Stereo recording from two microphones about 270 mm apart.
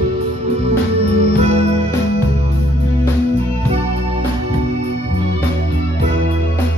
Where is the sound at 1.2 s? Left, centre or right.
Right.